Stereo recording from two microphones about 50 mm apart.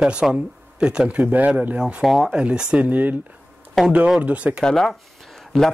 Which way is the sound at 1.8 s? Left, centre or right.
Centre.